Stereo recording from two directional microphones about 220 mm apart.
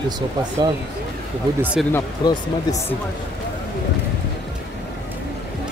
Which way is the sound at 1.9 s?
15° left (ahead or behind).